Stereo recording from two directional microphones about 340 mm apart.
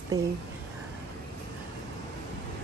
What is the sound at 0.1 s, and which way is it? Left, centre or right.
Speech, centre.